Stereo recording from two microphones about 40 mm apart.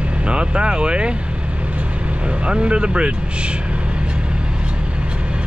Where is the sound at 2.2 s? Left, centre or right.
Right.